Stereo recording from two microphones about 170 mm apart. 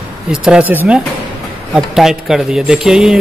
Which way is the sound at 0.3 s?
5° right (ahead or behind).